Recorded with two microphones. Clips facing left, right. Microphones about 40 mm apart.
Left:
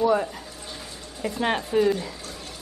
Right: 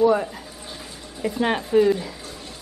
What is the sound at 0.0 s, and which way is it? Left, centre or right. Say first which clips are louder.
Speech: right 3 dB; centre.